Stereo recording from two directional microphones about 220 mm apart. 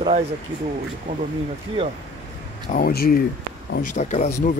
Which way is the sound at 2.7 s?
45° left (ahead or behind).